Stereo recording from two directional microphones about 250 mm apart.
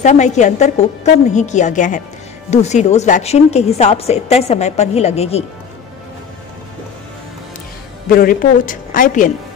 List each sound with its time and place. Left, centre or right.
0.0 s a woman's voice: left
8.1 s a woman's voice: left